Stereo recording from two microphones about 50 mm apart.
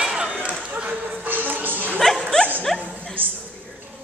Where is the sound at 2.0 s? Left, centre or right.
Centre.